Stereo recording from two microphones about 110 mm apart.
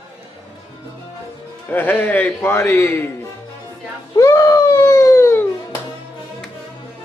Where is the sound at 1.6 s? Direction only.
20° left (ahead or behind).